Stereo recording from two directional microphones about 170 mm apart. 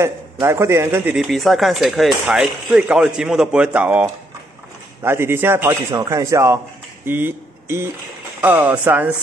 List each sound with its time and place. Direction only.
0.0 s speech: 15° right (ahead or behind)
5.0 s a man's voice: 15° right (ahead or behind)